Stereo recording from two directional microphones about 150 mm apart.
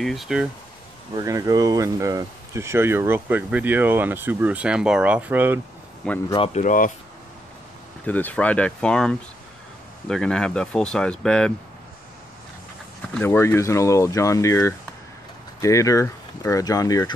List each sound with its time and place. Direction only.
0.0 s speech: centre (ahead or behind)
1.1 s speech: 20° right (ahead or behind)
6.0 s speech: 5° left (ahead or behind)
6.5 s speech: 60° left (ahead or behind)
8.0 s speech: 10° left (ahead or behind)
13.2 s speech: 15° left (ahead or behind)